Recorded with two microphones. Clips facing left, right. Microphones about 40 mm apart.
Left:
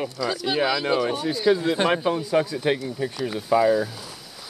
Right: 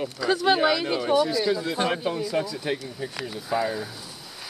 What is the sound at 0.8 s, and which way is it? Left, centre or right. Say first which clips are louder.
Speech: left 4 dB; left.